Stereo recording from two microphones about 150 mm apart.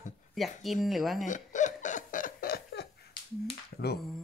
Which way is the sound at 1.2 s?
55° left (ahead or behind).